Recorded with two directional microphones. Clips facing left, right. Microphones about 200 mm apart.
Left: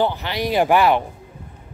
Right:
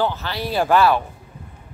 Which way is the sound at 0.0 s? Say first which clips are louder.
Left 2 dB; 15° left (ahead or behind).